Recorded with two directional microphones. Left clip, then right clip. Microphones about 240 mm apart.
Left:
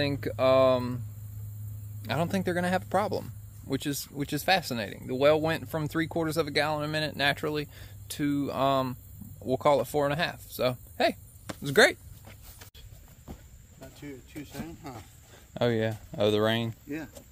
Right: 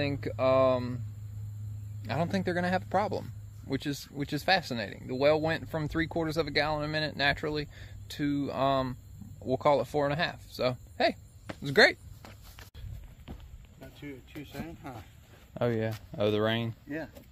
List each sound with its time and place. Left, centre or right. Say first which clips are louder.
0.0 s speech: left 3 dB; centre
2.0 s speech: left 2 dB; centre
11.4 s a sound: left 1 dB; centre
13.3 s cricket: left 2 dB; centre
14.4 s speech: left 1 dB; centre
15.5 s speech: left 3 dB; centre
16.9 s speech: right 3 dB; centre